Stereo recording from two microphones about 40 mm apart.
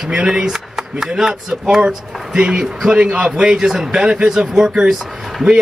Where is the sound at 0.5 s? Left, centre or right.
Centre.